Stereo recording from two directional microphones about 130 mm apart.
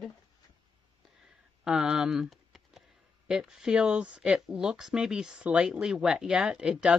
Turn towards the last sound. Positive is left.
turn(degrees=-5)  # may be behind; listen again after turning